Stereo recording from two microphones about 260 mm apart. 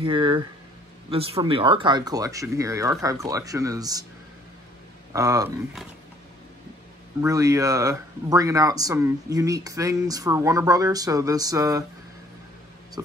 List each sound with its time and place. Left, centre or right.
0.0 s speech: centre
5.1 s speech: centre
7.2 s speech: centre